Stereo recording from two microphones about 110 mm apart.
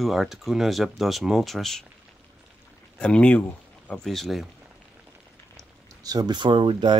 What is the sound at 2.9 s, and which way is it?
Speech, 10° left (ahead or behind).